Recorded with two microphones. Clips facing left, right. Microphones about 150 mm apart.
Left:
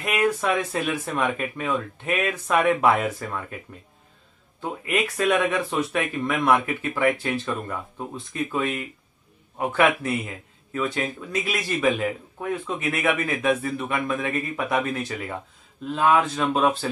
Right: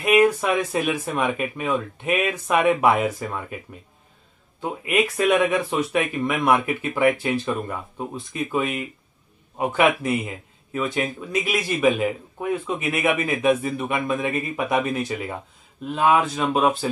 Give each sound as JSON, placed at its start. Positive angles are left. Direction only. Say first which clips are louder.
{"t": 0.0, "sound": "speech", "louder": "right 5 dB", "side_deg": -15}
{"t": 4.6, "sound": "speech", "louder": "right 3 dB", "side_deg": -15}